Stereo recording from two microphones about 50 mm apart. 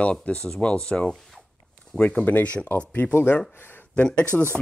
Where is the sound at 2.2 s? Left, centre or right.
Left.